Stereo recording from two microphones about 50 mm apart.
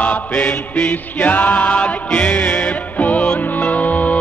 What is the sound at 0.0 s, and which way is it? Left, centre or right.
Chant, left.